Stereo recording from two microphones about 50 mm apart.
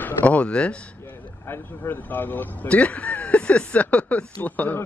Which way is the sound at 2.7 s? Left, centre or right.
Left.